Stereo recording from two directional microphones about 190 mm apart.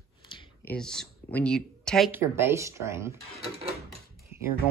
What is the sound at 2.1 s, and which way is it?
Speech, 10° right (ahead or behind).